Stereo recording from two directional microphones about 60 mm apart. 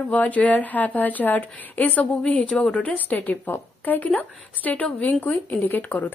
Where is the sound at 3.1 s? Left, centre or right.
Left.